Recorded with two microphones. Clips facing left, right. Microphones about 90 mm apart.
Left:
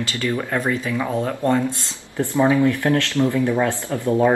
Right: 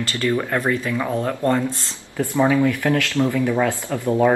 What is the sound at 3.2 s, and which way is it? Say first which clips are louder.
Speech: left 1 dB; 10° right (ahead or behind).